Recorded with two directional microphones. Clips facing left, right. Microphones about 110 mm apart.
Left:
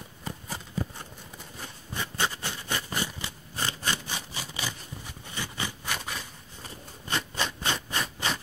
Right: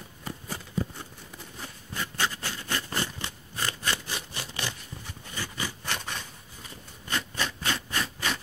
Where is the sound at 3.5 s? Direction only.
30° left (ahead or behind).